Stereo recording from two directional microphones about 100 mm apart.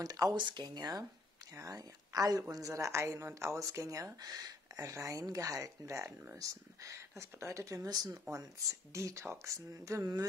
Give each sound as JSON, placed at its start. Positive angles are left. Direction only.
{"t": 0.0, "sound": "a woman's voice", "side_deg": -40}